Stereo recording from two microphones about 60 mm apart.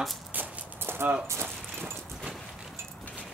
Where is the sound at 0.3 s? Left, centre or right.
Right.